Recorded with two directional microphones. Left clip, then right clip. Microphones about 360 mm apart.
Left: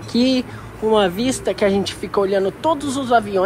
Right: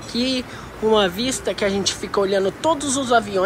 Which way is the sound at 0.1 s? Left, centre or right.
Centre.